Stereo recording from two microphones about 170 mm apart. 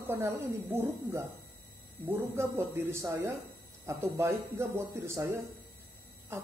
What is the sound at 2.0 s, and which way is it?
A man's voice, 15° right (ahead or behind).